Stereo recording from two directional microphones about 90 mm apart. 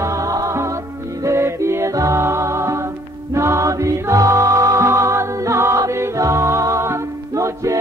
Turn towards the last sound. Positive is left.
turn(degrees=-35)  # may be behind; listen again after turning